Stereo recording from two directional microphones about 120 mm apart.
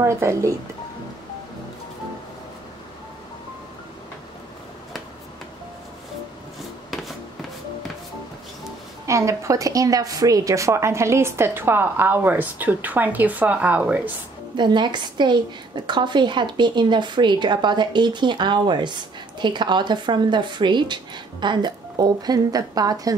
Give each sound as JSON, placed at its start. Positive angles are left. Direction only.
{"t": 0.0, "sound": "a woman's voice", "side_deg": -25}
{"t": 9.0, "sound": "a woman's voice", "side_deg": -25}
{"t": 14.6, "sound": "a woman's voice", "side_deg": -40}